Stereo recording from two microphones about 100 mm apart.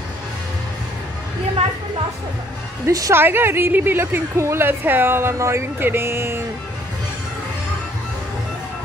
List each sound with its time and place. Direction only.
2.9 s a woman's voice: 35° right (ahead or behind)
3.2 s a woman's voice: 20° right (ahead or behind)